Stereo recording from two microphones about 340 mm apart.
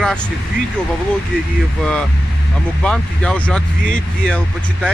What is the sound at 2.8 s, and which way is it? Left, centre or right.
Speech, centre.